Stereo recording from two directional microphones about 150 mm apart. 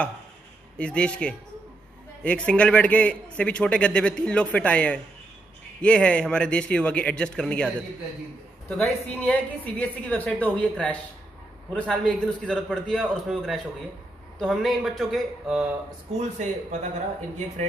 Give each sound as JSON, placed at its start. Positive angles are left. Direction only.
{"t": 0.7, "sound": "a man's voice", "side_deg": 5}
{"t": 16.2, "sound": "speech", "side_deg": -50}